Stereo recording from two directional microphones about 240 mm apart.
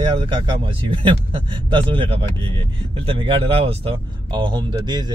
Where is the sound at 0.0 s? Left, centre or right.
Right.